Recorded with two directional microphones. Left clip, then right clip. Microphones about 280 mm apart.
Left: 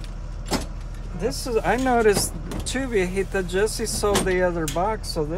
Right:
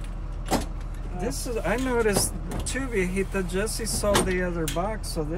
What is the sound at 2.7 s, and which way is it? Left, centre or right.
Speech, left.